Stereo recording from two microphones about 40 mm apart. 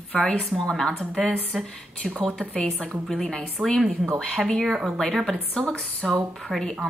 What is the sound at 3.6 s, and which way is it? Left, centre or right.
Speech, right.